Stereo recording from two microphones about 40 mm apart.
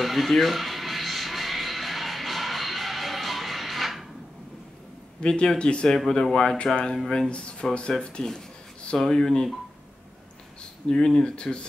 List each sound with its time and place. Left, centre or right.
0.0 s music: centre
5.2 s speech: left
6.0 s speech: centre
8.9 s speech: centre
10.6 s a sound: left
11.1 s speech: centre